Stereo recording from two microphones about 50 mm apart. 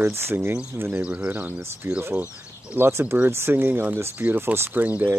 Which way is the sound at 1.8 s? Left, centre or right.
Right.